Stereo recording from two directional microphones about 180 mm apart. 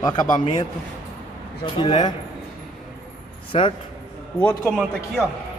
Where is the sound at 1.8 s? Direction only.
25° left (ahead or behind).